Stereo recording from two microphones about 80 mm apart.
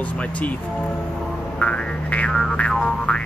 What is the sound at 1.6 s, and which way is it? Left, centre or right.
Music, centre.